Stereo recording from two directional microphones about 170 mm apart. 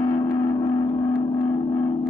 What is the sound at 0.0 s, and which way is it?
Gong, 25° left (ahead or behind).